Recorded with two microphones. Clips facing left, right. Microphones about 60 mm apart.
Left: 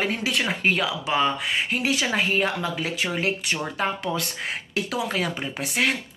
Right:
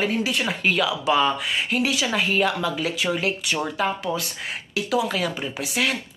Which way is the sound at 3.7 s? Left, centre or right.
Left.